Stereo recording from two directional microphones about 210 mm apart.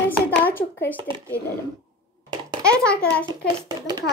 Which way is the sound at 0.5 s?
10° left (ahead or behind).